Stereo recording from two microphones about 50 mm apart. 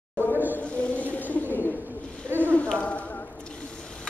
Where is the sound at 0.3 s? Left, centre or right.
Right.